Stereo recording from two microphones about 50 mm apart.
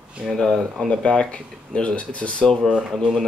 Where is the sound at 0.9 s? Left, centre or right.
Centre.